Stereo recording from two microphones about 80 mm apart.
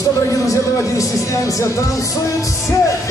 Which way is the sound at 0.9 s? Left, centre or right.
Left.